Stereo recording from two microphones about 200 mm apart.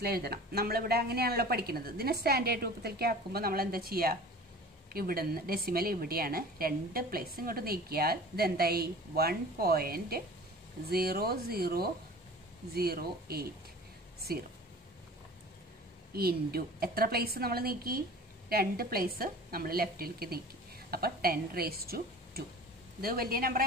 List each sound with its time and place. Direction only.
0.0 s a woman's voice: 50° right (ahead or behind)
16.1 s a woman's voice: 50° right (ahead or behind)